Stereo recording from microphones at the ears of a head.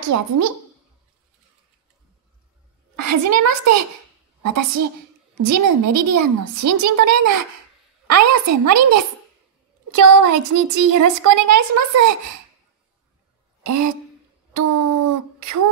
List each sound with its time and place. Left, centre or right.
0.0 s a woman's voice: right
2.9 s a child's voice: right
13.6 s a woman's voice: right